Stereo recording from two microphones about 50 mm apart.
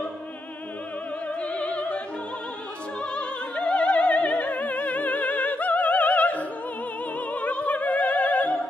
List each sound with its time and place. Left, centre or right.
1.4 s opera: left
3.0 s opera: left